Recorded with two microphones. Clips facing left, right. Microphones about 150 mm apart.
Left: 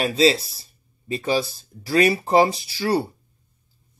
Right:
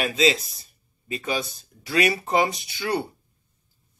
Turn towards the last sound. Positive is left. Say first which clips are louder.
# left 4 dB
turn(degrees=30)  # may be behind; listen again after turning